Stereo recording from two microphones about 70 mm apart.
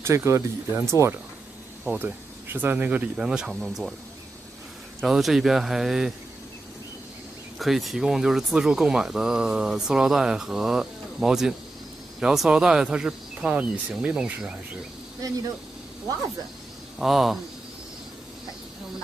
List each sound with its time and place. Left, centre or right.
0.0 s speech: right
2.0 s speech: right
3.2 s speech: centre
5.0 s speech: centre
7.5 s speech: centre
17.0 s speech: centre